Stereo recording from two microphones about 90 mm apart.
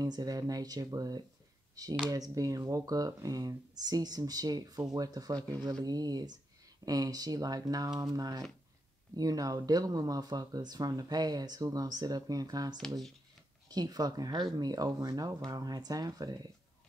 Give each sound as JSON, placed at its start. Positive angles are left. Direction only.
{"t": 0.0, "sound": "speech", "side_deg": -45}